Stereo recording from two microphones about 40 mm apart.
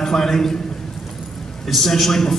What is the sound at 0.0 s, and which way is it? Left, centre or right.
Speech, centre.